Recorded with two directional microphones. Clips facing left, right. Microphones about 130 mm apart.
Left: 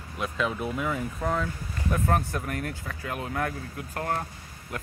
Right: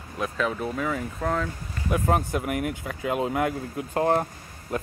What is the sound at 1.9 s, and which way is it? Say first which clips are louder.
Speech: right 3 dB; 10° right (ahead or behind).